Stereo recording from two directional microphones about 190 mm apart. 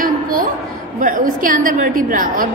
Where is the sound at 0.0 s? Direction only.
45° right (ahead or behind).